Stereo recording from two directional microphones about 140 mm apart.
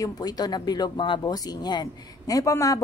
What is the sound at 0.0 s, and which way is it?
Speech, 30° left (ahead or behind).